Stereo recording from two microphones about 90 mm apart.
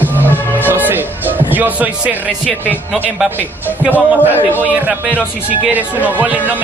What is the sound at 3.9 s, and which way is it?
Speech, 25° left (ahead or behind).